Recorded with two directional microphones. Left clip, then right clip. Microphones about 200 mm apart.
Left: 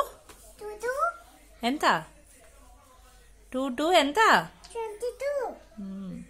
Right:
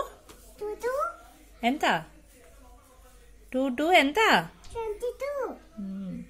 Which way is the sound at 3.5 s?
10° left (ahead or behind).